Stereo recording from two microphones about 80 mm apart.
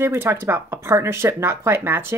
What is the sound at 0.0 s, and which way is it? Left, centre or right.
Speech, right.